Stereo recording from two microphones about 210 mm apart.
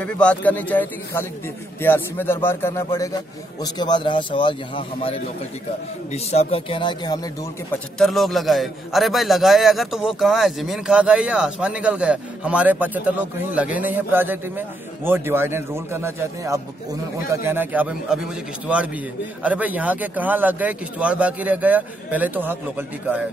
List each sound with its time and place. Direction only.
0.0 s a man's voice: 5° left (ahead or behind); by 7.2 s 20° left (ahead or behind)
7.7 s speech: centre (ahead or behind)